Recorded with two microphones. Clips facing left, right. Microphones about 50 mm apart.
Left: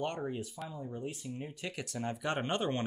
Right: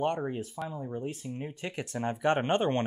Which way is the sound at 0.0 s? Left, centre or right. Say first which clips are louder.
Right 6 dB; right.